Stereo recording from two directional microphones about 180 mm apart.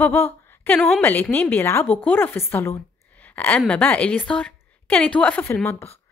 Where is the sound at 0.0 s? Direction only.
10° left (ahead or behind).